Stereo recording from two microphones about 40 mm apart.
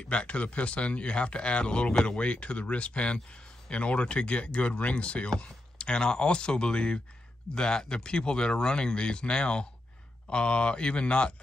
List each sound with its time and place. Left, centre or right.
0.1 s speech: left